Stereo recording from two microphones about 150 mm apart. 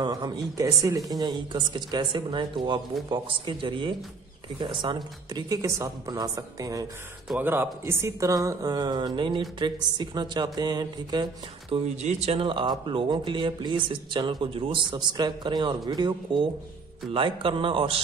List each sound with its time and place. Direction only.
0.0 s speech: 25° right (ahead or behind)
7.2 s speech: 10° right (ahead or behind); by 11.2 s 30° right (ahead or behind)
12.0 s speech: 45° right (ahead or behind)